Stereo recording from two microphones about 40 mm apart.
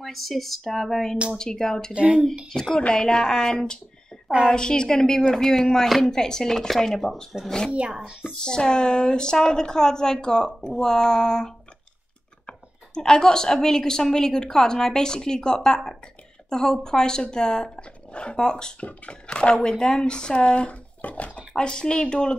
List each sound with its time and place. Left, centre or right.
0.0 s speech: centre
1.3 s a woman's voice: centre
2.0 s speech: right
2.9 s a woman's voice: centre
6.1 s a woman's voice: centre
7.7 s speech: right
8.3 s a woman's voice: centre
18.8 s speech: left
21.5 s speech: centre